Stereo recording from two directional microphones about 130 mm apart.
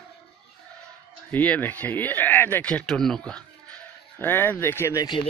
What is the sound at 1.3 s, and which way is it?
Speech, 10° left (ahead or behind).